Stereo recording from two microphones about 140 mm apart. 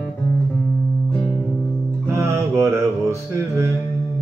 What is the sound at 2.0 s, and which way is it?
Music, 20° right (ahead or behind).